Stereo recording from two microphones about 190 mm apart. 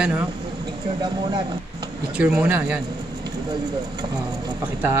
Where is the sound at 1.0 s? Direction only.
20° right (ahead or behind).